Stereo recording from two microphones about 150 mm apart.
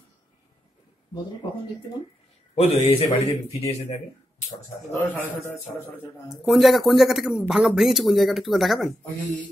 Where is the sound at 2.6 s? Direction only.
45° left (ahead or behind).